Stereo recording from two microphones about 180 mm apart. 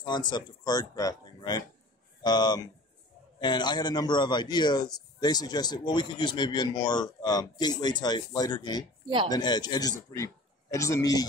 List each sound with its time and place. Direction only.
0.3 s a man's voice: 20° left (ahead or behind)